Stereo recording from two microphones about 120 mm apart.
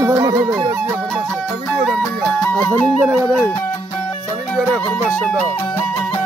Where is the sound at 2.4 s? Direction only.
10° left (ahead or behind).